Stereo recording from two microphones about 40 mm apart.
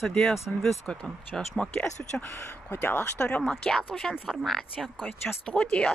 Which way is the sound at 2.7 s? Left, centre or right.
Left.